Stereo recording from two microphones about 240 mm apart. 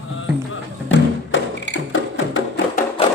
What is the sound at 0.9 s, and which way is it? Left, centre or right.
Music, left.